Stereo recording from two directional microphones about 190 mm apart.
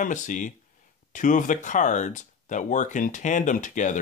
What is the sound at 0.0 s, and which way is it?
Speech, 40° left (ahead or behind).